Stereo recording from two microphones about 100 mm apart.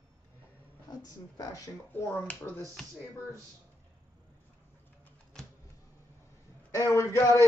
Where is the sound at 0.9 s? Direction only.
40° left (ahead or behind).